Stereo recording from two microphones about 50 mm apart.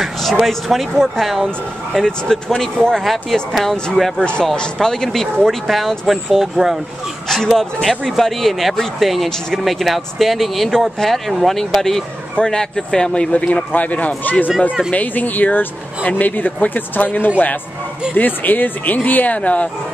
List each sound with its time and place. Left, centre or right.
0.0 s a sound: centre
0.5 s speech: centre
2.0 s speech: centre
3.0 s speech: centre
4.2 s speech: centre
4.8 s speech: centre
7.2 s speech: centre; by 19.7 s left